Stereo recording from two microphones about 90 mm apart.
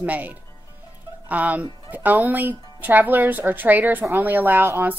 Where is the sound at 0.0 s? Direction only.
15° right (ahead or behind).